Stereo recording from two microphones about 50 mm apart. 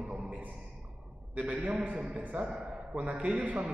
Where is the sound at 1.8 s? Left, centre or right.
Right.